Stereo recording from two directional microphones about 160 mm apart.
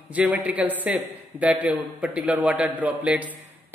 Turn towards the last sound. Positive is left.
turn(degrees=-10)  # may be behind; listen again after turning